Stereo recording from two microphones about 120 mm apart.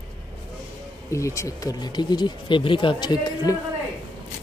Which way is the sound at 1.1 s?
25° left (ahead or behind).